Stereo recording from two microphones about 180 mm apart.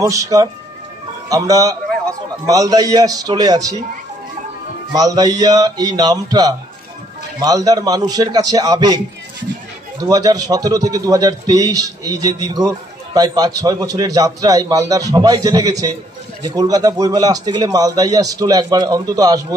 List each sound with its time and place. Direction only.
0.0 s a man's voice: 20° right (ahead or behind)
4.9 s a man's voice: 20° right (ahead or behind)